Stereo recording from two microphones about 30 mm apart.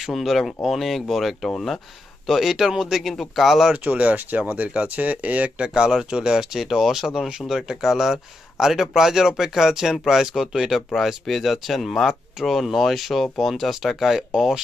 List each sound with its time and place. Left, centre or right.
0.0 s speech: centre
3.0 s speech: centre
3.7 s speech: right
5.9 s speech: right
6.5 s speech: centre
11.0 s speech: centre
12.4 s speech: centre
12.8 s speech: centre
14.1 s speech: centre